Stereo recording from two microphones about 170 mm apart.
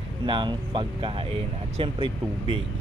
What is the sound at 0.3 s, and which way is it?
Speech, 30° right (ahead or behind).